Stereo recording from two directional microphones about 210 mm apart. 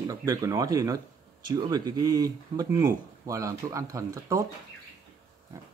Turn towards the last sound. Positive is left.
turn(degrees=-15)  # may be behind; listen again after turning